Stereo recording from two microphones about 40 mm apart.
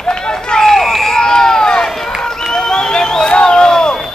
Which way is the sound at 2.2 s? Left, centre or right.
Centre.